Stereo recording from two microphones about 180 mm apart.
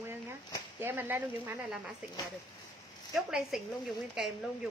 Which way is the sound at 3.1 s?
Centre (ahead or behind).